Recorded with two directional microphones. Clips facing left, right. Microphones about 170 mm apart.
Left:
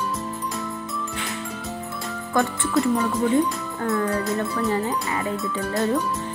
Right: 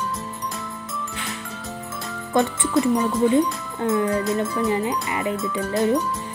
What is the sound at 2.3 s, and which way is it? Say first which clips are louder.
A woman's voice: right 2 dB; 20° right (ahead or behind).